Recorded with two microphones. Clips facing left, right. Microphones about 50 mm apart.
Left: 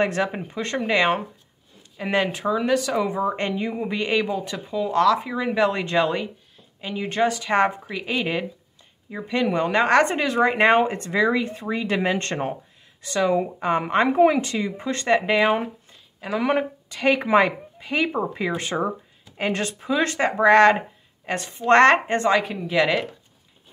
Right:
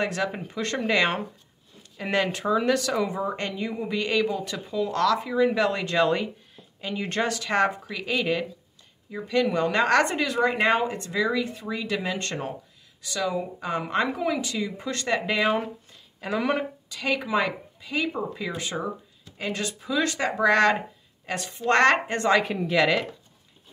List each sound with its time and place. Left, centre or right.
0.0 s speech: left
0.3 s speech: centre
3.3 s speech: left
14.7 s speech: left; by 16.4 s centre
16.9 s speech: left
22.3 s speech: centre
22.7 s speech: centre